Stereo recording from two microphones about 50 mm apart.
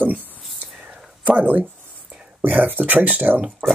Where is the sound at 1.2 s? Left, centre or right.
Right.